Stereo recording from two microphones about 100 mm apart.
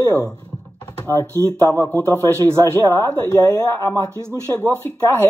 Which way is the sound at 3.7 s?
25° left (ahead or behind).